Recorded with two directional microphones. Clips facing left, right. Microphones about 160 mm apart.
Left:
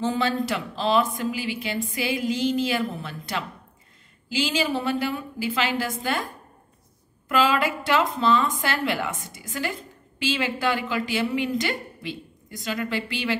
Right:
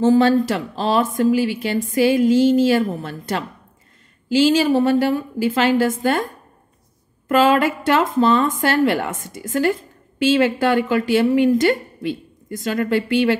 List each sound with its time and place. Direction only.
0.0 s a woman's voice: 45° right (ahead or behind)
7.2 s a woman's voice: 45° right (ahead or behind)